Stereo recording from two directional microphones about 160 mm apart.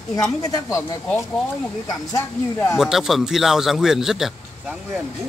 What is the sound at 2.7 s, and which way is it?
A man's voice, 5° right (ahead or behind).